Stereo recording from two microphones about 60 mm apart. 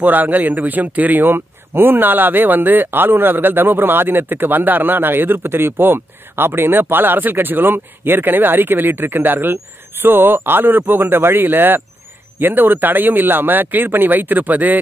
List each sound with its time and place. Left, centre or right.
0.0 s speech: right